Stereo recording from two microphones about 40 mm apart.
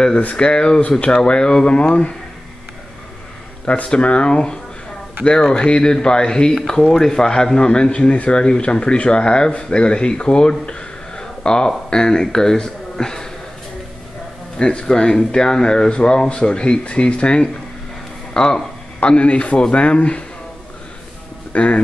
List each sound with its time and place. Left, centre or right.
0.4 s speech: left
3.6 s speech: left; by 13.3 s centre
14.6 s speech: left
18.9 s a man's voice: left
21.5 s a man's voice: left